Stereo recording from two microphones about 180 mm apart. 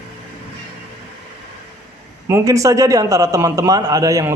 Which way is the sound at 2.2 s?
15° right (ahead or behind).